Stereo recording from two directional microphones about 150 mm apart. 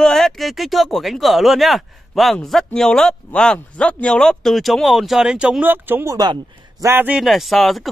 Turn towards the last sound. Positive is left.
turn(degrees=0)  # may be behind; listen again after turning